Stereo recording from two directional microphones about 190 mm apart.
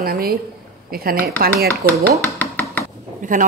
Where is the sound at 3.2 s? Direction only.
45° right (ahead or behind).